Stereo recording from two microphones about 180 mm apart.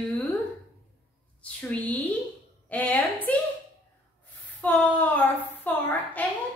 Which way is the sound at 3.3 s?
10° left (ahead or behind).